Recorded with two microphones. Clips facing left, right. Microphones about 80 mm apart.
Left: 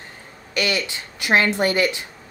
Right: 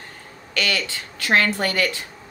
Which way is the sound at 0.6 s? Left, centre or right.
Centre.